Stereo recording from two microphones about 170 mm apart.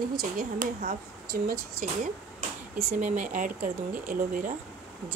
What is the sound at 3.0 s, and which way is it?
Speech, 45° right (ahead or behind).